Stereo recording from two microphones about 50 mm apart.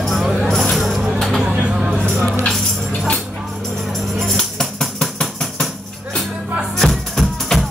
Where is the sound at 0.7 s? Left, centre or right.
Centre.